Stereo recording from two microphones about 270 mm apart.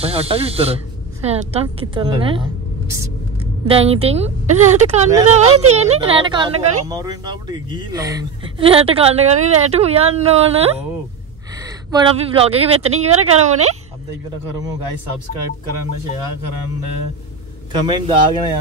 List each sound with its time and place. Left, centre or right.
0.0 s speech: right
3.6 s speech: right
17.7 s a man's voice: centre